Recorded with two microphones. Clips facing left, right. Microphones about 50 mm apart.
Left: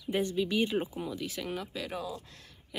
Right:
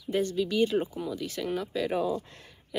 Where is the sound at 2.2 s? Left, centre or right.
Right.